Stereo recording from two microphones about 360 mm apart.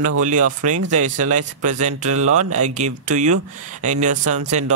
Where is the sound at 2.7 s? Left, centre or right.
Centre.